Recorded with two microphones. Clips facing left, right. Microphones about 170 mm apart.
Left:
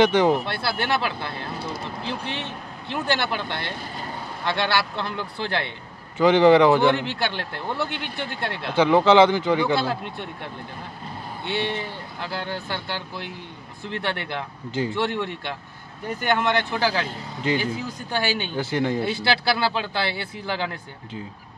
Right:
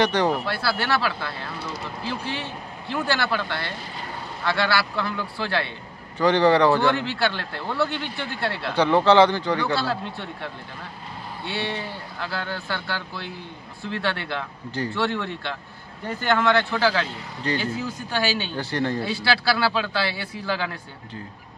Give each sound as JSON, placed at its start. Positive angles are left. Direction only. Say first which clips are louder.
{"t": 0.0, "sound": "a man's voice", "louder": "left 3 dB", "side_deg": 15}
{"t": 11.4, "sound": "a man's voice", "louder": "left 2 dB", "side_deg": 20}